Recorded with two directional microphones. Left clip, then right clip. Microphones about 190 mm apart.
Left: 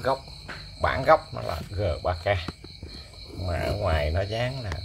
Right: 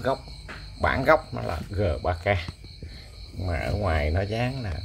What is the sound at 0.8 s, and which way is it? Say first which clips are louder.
Speech: even; 30° right (ahead or behind).